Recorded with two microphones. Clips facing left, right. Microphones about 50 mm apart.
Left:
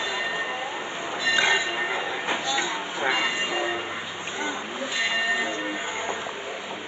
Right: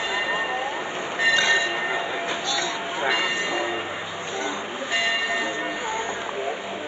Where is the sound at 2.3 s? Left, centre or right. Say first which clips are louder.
Even; centre.